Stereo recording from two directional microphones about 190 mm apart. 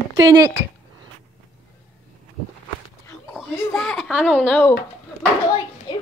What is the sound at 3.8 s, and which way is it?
Speech, centre (ahead or behind).